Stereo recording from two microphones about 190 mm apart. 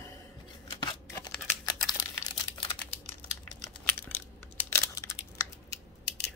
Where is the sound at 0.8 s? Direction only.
20° left (ahead or behind).